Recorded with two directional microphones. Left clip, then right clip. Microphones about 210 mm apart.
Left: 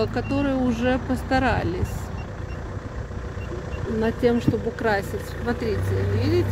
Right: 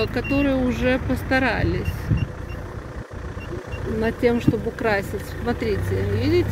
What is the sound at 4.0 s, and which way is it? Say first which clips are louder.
Speech: right 1 dB; 5° left (ahead or behind).